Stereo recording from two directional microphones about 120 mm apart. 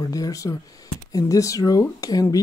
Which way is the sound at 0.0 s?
30° left (ahead or behind).